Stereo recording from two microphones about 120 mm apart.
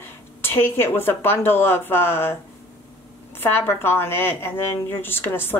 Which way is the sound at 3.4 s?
20° left (ahead or behind).